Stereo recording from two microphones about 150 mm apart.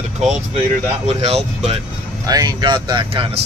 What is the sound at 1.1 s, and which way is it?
Speech, 45° right (ahead or behind).